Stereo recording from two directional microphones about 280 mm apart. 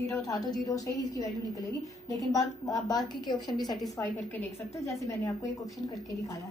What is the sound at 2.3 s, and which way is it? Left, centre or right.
A woman's voice, centre.